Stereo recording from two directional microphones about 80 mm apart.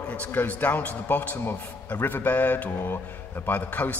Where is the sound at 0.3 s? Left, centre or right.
Left.